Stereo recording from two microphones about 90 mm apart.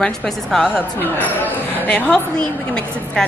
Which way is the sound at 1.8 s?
15° left (ahead or behind).